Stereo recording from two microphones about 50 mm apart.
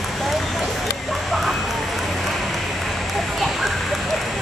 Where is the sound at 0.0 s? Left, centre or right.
Centre.